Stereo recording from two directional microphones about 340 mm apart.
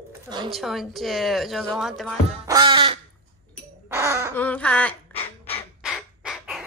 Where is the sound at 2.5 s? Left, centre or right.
Centre.